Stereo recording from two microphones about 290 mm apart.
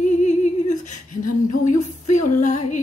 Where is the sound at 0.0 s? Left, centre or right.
Left.